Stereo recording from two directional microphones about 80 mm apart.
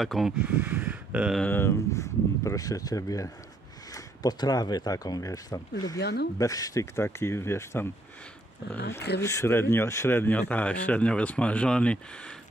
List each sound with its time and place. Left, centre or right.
0.0 s speech: centre
0.4 s speech: centre
1.4 s speech: left
7.0 s speech: left
8.9 s speech: left; by 12.4 s centre